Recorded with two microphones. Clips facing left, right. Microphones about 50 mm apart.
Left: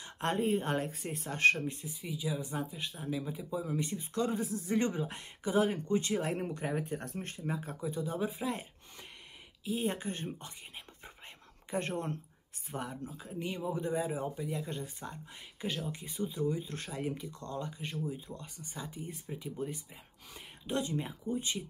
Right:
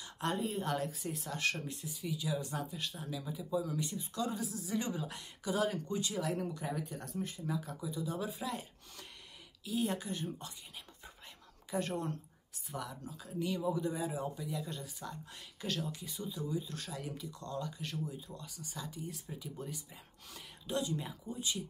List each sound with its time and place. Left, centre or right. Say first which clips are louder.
0.0 s a woman's voice: left 4 dB; left
8.1 s a woman's voice: left 3 dB; left
9.7 s a woman's voice: left 1 dB; left
11.7 s a woman's voice: left 1 dB; left